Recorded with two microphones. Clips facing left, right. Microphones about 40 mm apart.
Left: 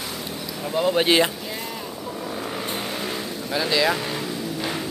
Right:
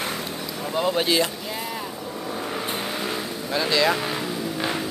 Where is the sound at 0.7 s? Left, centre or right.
Centre.